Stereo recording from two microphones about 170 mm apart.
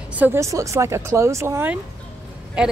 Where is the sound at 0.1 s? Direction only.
10° right (ahead or behind).